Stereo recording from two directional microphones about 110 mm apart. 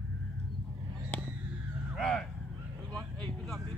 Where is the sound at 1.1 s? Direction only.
10° left (ahead or behind).